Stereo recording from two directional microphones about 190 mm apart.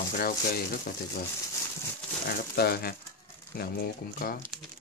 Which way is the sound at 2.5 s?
55° left (ahead or behind).